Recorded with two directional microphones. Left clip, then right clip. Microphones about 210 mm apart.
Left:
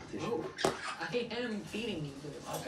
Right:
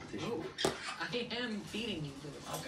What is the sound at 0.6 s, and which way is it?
Speech, 5° left (ahead or behind).